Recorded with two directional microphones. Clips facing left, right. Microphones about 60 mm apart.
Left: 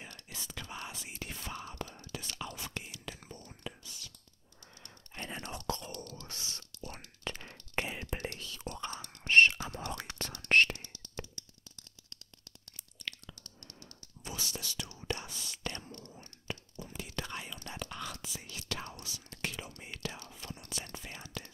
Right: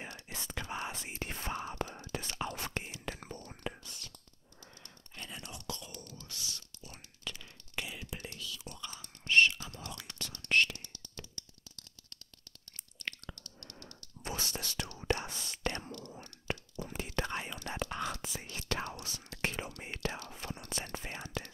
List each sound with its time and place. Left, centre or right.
0.3 s whispering: right
3.2 s whispering: right
4.8 s typing: left
5.7 s whispering: left
8.9 s whispering: left
9.3 s whispering: left
10.9 s a sound: left
13.6 s whispering: right
16.0 s whispering: right
16.9 s whispering: right